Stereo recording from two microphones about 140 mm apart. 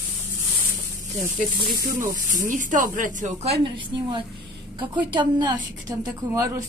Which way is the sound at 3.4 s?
40° right (ahead or behind).